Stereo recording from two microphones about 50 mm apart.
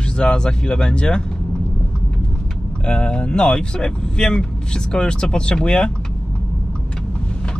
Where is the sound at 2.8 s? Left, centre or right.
Centre.